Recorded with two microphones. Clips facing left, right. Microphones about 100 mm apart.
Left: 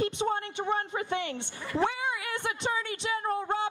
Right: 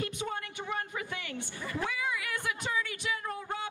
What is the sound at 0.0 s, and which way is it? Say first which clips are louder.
A woman's voice: left 7 dB; 30° left (ahead or behind).